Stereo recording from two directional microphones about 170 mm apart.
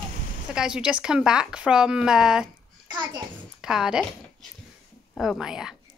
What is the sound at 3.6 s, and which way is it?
Speech, 5° right (ahead or behind).